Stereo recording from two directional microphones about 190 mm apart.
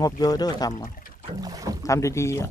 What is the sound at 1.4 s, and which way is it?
Boat, 20° right (ahead or behind).